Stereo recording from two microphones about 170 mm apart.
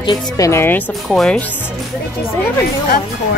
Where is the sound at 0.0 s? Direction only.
25° left (ahead or behind).